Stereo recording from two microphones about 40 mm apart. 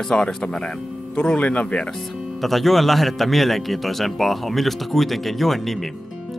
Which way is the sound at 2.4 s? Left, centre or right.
Centre.